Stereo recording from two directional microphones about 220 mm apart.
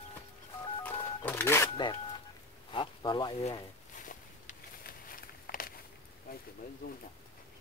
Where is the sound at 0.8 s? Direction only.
10° left (ahead or behind).